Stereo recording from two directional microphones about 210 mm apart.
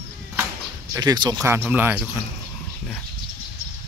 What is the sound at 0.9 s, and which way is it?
Speech, 20° right (ahead or behind).